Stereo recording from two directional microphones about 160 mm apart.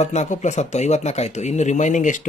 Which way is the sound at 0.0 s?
45° left (ahead or behind).